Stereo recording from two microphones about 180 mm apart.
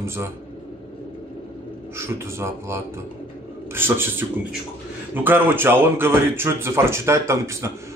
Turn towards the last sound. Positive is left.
turn(degrees=-15)  # may be behind; listen again after turning